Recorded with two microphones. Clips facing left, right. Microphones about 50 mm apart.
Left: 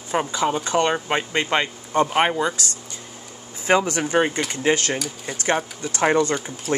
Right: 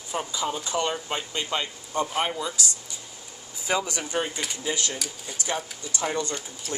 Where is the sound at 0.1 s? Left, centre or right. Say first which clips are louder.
Left 7 dB; left.